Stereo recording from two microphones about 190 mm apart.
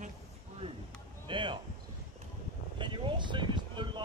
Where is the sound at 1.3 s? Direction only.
25° right (ahead or behind).